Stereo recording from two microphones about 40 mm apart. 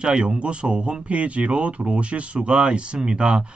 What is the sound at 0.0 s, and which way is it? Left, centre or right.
Speech, right.